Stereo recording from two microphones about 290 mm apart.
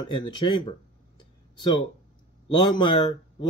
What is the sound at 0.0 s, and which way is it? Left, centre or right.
Speech, centre.